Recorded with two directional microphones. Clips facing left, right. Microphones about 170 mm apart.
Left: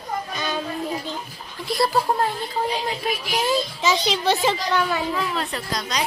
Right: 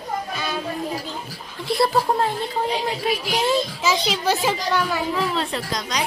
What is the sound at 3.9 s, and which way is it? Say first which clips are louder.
Speech: left 2 dB; 10° right (ahead or behind).